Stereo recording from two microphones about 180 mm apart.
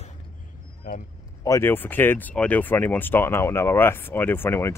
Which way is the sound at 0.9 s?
50° left (ahead or behind).